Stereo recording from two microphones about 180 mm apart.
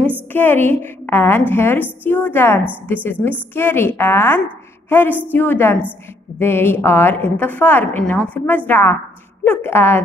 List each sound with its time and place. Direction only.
0.3 s a woman's voice: 10° left (ahead or behind)
4.8 s a sound: 10° left (ahead or behind)
5.3 s a woman's voice: 10° left (ahead or behind)